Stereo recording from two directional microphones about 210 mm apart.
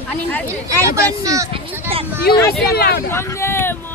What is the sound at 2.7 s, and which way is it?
Speech, 50° left (ahead or behind).